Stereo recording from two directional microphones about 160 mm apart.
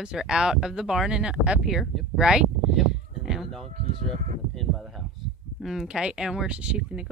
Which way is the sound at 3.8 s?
55° right (ahead or behind).